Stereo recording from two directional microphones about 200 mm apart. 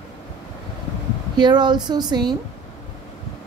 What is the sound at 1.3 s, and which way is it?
Speech, 20° right (ahead or behind).